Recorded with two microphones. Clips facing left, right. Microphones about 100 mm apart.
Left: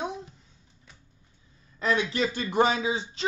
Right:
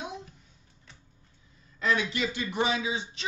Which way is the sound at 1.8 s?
35° left (ahead or behind).